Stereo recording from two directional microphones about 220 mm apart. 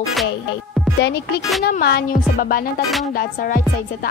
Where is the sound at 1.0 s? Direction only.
50° left (ahead or behind).